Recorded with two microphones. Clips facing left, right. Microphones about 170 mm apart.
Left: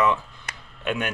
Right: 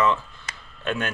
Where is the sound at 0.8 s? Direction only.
15° left (ahead or behind).